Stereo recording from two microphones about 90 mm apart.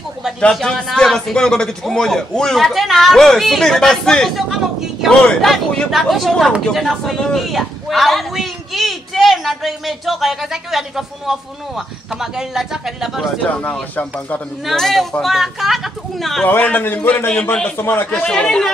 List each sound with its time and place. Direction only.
0.4 s a man's voice: 5° left (ahead or behind)
14.7 s a man's voice: 5° left (ahead or behind)
16.4 s a man's voice: 20° left (ahead or behind)
17.7 s a man's voice: 25° left (ahead or behind)
18.3 s a man's voice: 10° left (ahead or behind)